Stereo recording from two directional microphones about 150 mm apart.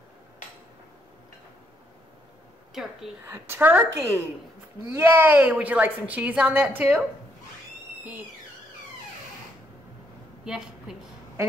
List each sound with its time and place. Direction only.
2.7 s a woman's voice: centre (ahead or behind)
3.3 s a woman's voice: 15° right (ahead or behind)
10.4 s a woman's voice: 5° right (ahead or behind)